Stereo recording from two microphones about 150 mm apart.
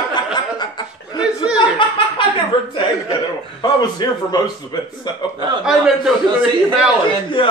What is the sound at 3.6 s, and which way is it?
A man's voice, 30° left (ahead or behind).